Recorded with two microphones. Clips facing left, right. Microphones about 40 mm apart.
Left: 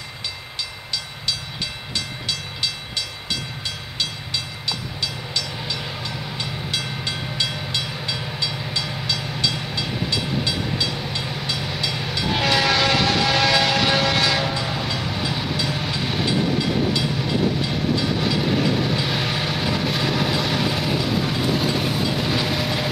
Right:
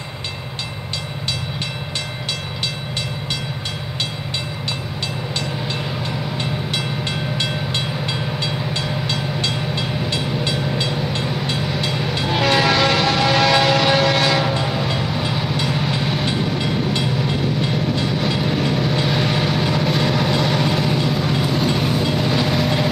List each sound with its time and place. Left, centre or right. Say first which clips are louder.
5.0 s train: right 3 dB; right
11.9 s train: right 3 dB; centre
14.9 s vehicle: right 3 dB; centre
17.6 s train: right 2 dB; centre
18.0 s vehicle: right 1 dB; centre